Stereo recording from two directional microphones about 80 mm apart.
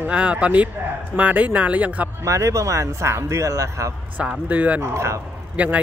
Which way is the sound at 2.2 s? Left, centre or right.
Right.